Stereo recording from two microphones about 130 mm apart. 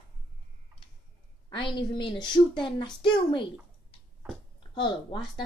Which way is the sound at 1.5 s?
40° left (ahead or behind).